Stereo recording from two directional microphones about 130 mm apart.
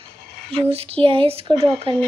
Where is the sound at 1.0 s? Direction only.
45° right (ahead or behind).